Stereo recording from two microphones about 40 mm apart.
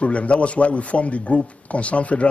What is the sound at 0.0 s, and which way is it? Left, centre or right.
Speech, left.